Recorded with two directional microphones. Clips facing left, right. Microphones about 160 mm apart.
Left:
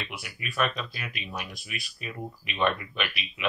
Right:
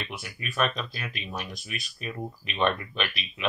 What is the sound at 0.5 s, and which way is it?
Speech, 30° right (ahead or behind).